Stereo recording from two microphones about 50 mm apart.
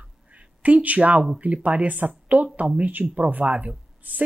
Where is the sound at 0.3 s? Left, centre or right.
Right.